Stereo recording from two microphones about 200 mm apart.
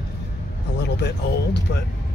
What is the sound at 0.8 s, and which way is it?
Speech, 60° left (ahead or behind).